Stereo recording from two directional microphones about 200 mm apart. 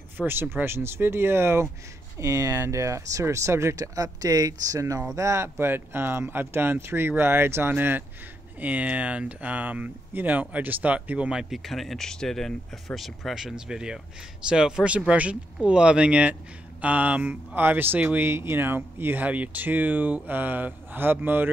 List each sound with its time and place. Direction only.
0.2 s speech: 10° right (ahead or behind)